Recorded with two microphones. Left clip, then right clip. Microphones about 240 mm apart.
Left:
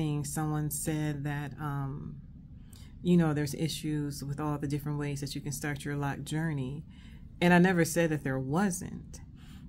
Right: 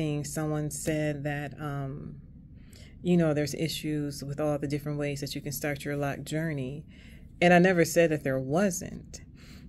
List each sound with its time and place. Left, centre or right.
0.0 s speech: centre